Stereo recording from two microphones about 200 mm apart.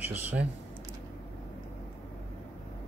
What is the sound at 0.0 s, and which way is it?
Speech, 10° right (ahead or behind).